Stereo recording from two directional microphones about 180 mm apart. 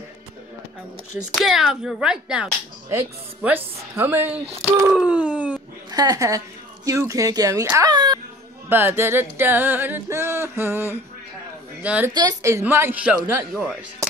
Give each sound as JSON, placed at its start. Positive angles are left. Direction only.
{"t": 1.3, "sound": "speech", "side_deg": 0}
{"t": 2.9, "sound": "music", "side_deg": -15}
{"t": 4.8, "sound": "a sound", "side_deg": -5}
{"t": 5.9, "sound": "speech", "side_deg": -20}
{"t": 8.6, "sound": "music", "side_deg": -10}
{"t": 11.8, "sound": "a woman's voice", "side_deg": -5}
{"t": 12.1, "sound": "music", "side_deg": -20}
{"t": 13.5, "sound": "speech", "side_deg": -5}